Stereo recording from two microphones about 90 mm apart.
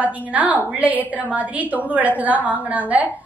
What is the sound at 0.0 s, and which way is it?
A woman's voice, 15° right (ahead or behind).